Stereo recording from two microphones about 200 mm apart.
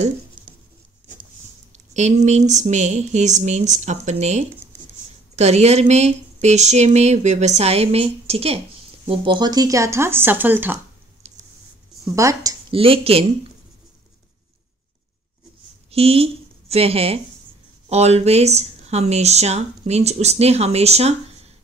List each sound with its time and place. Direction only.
0.4 s writing: 25° right (ahead or behind)
2.0 s speech: 35° right (ahead or behind); by 10.8 s 10° right (ahead or behind)
12.2 s speech: 15° right (ahead or behind)
12.7 s speech: 30° right (ahead or behind)
15.9 s a woman's voice: 30° right (ahead or behind)